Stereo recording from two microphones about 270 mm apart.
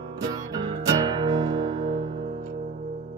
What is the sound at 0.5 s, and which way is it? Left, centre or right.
Music, centre.